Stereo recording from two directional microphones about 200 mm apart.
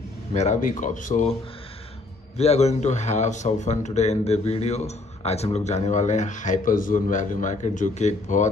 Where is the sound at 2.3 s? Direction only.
30° left (ahead or behind).